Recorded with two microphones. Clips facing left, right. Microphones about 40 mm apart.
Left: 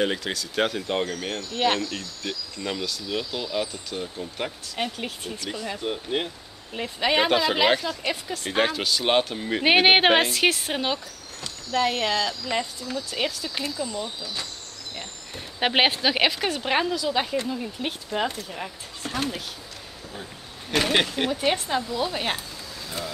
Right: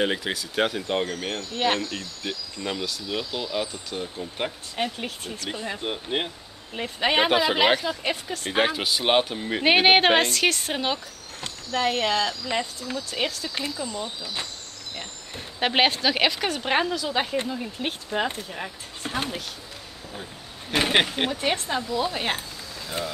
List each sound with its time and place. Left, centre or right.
0.0 s speech: centre
0.6 s speech: centre
5.8 s speech: centre
15.6 s speech: centre
19.0 s speech: right
20.7 s speech: centre
21.3 s speech: centre